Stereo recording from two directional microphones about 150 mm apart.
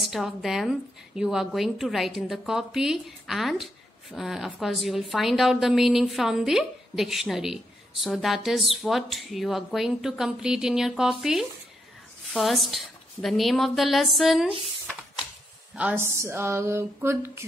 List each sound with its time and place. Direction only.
0.1 s a woman's voice: centre (ahead or behind)
15.7 s speech: 10° right (ahead or behind)